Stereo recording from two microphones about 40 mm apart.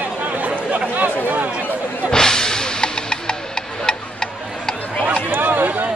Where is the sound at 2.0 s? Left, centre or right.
Centre.